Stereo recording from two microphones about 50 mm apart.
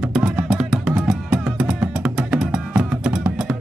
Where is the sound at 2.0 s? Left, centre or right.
Centre.